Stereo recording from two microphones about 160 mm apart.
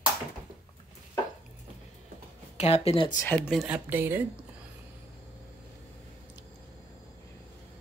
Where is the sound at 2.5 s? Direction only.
40° left (ahead or behind).